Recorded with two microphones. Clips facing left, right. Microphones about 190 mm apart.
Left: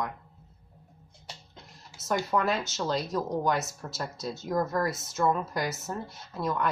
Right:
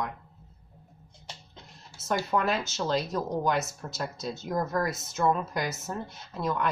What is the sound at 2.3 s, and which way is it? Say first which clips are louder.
Speech: right 1 dB; centre (ahead or behind).